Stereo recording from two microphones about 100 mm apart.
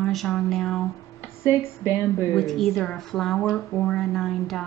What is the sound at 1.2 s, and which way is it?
A woman's voice, 30° left (ahead or behind).